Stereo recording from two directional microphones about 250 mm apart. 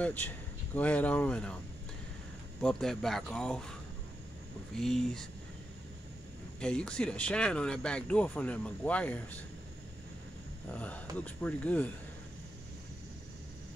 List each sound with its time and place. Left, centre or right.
0.7 s speech: centre
2.6 s speech: centre
4.7 s speech: centre
6.6 s speech: centre
10.7 s speech: centre